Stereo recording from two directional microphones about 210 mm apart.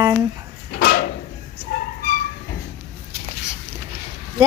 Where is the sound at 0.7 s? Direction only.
45° left (ahead or behind).